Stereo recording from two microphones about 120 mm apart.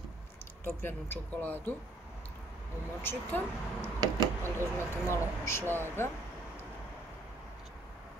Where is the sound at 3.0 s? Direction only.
20° left (ahead or behind).